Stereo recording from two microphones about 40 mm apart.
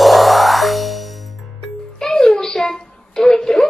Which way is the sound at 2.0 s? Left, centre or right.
Centre.